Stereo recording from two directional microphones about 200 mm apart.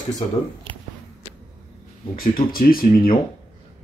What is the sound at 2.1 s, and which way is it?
Speech, 45° left (ahead or behind).